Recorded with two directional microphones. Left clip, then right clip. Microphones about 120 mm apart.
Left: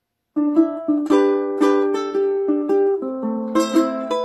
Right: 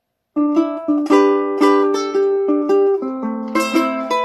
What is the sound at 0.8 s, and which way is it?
Music, 25° right (ahead or behind).